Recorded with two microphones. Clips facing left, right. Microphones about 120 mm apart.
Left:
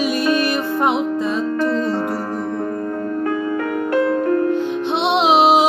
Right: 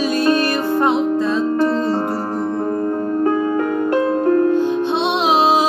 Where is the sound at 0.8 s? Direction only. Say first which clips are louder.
Right 3 dB; 10° left (ahead or behind).